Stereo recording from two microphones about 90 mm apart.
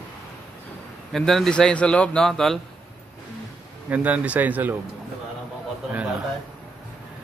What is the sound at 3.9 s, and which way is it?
Speech, 15° right (ahead or behind).